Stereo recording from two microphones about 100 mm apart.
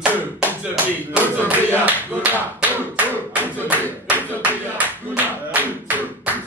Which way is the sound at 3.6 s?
15° right (ahead or behind).